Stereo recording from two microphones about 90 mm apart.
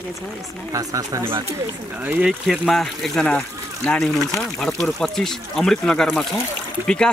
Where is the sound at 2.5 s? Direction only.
Centre (ahead or behind).